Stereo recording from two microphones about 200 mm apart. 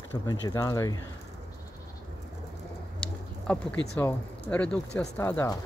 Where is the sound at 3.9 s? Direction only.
10° left (ahead or behind).